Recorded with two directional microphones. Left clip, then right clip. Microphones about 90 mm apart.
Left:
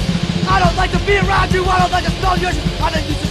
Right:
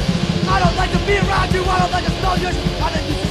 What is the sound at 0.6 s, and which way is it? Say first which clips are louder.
Music: left 2 dB; 20° left (ahead or behind).